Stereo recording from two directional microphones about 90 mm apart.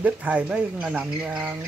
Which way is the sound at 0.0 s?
15° right (ahead or behind).